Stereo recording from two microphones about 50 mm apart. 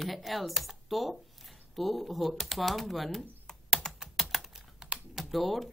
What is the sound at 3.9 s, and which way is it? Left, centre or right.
Computer keyboard, centre.